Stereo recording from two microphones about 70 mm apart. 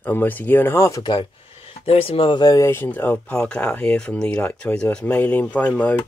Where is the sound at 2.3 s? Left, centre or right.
Left.